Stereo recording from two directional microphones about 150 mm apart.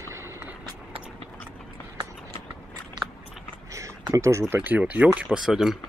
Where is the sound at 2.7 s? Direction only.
25° right (ahead or behind).